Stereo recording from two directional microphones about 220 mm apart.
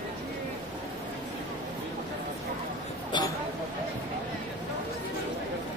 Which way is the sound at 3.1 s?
20° left (ahead or behind).